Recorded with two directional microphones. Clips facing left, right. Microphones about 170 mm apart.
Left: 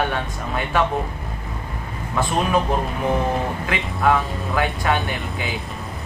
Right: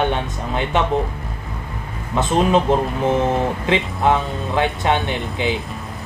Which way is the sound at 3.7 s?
25° right (ahead or behind).